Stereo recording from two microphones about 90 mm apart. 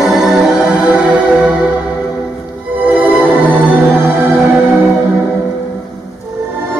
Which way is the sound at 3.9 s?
Centre (ahead or behind).